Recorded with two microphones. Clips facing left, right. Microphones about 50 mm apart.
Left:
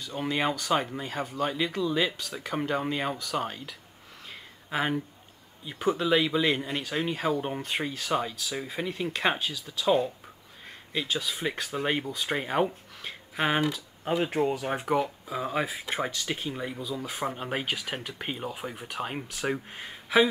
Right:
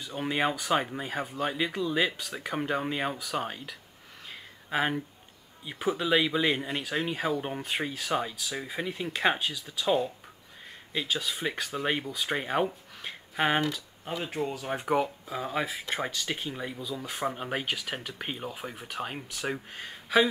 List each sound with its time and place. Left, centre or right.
0.1 s speech: centre
4.3 s a sound: centre
5.7 s speech: centre
14.0 s speech: left
14.9 s speech: centre